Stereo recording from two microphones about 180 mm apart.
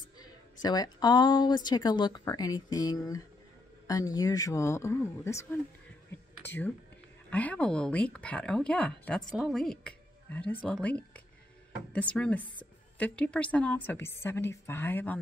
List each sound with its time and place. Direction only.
0.2 s a woman's voice: 20° left (ahead or behind)